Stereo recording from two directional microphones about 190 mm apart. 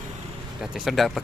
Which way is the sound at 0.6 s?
Centre (ahead or behind).